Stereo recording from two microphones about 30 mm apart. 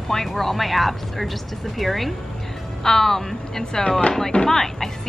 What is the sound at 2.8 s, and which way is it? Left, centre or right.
A woman's voice, centre.